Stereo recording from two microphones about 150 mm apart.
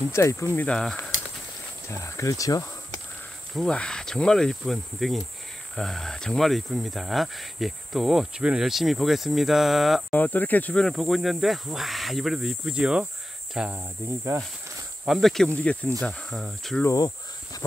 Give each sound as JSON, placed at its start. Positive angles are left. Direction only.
{"t": 0.1, "sound": "speech", "side_deg": 20}
{"t": 0.7, "sound": "speech", "side_deg": 5}
{"t": 1.9, "sound": "speech", "side_deg": 20}
{"t": 3.5, "sound": "speech", "side_deg": 5}
{"t": 10.1, "sound": "speech", "side_deg": 10}
{"t": 14.0, "sound": "speech", "side_deg": -20}
{"t": 15.0, "sound": "speech", "side_deg": 0}
{"t": 16.8, "sound": "a sound", "side_deg": 25}